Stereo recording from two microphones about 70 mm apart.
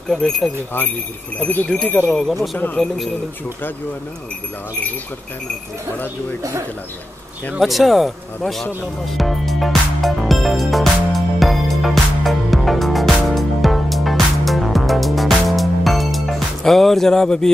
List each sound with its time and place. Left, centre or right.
0.1 s speech: centre
1.4 s speech: left
2.0 s speech: centre
7.6 s speech: centre
9.0 s music: centre